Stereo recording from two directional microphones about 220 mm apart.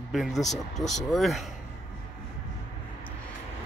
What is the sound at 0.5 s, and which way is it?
Speech, 30° left (ahead or behind).